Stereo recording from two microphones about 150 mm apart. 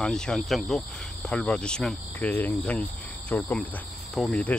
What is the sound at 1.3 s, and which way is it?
Cricket, 5° left (ahead or behind).